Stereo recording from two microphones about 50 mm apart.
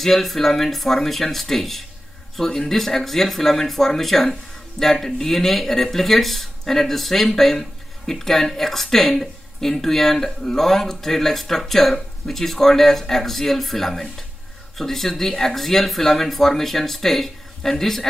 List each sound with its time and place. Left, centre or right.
0.0 s speech: centre